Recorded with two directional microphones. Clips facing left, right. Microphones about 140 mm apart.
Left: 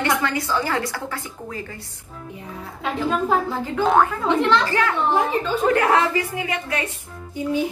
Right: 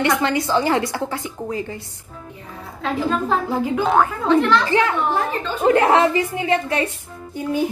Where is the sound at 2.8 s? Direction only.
10° left (ahead or behind).